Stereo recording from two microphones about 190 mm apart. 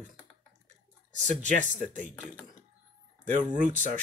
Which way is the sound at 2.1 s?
5° left (ahead or behind).